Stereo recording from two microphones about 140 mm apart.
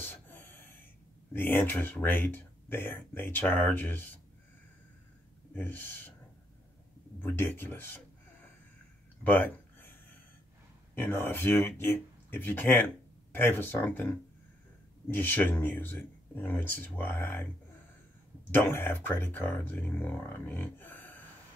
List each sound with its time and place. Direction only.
0.0 s gasp: 15° left (ahead or behind)
1.3 s speech: 15° left (ahead or behind)
5.5 s speech: 15° left (ahead or behind)
7.2 s speech: 15° left (ahead or behind)
9.2 s a sound: 15° left (ahead or behind)
11.0 s speech: 15° left (ahead or behind)
15.0 s speech: 15° left (ahead or behind)
18.5 s speech: 15° left (ahead or behind)